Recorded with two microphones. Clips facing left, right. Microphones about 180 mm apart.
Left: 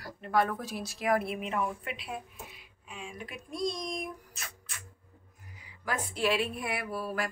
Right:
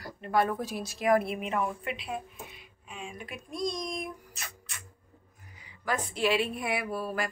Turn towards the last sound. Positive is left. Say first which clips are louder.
# right 2 dB
turn(degrees=5)  # may be behind; listen again after turning